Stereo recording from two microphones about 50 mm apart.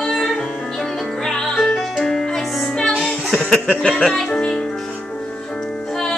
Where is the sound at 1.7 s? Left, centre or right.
Centre.